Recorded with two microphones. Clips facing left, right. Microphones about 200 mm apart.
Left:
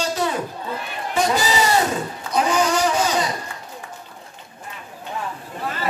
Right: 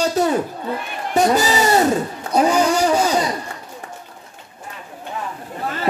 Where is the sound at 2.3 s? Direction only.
35° right (ahead or behind).